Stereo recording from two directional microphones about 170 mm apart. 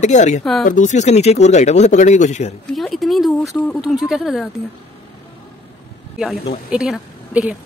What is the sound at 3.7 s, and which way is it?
Speech, centre (ahead or behind).